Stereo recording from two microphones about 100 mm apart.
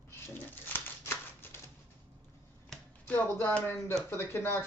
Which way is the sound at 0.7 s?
20° left (ahead or behind).